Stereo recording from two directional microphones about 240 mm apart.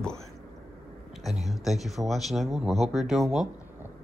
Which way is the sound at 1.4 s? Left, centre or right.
Centre.